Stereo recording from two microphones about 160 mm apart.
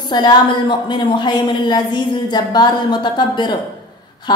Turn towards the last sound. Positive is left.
turn(degrees=25)  # may be behind; listen again after turning